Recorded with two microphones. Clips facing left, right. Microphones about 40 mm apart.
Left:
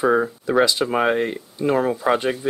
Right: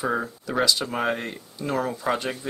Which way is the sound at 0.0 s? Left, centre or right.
Centre.